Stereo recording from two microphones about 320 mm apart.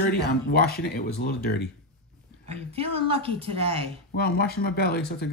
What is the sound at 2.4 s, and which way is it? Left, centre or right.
A woman's voice, centre.